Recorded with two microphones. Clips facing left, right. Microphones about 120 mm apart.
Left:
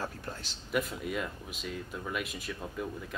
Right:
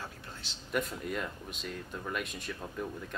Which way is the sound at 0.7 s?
Centre (ahead or behind).